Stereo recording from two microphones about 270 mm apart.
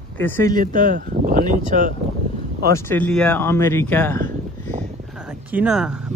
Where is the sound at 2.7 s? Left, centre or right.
Centre.